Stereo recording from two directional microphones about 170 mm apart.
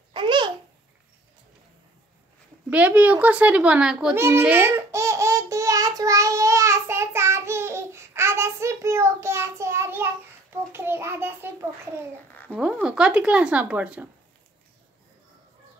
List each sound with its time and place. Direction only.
0.1 s babbling: 30° right (ahead or behind)
2.7 s a sound: 10° right (ahead or behind)
10.7 s child singing: 15° right (ahead or behind)
12.4 s speech: 5° right (ahead or behind)